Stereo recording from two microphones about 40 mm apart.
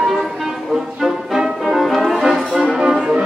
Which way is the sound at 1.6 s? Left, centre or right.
Centre.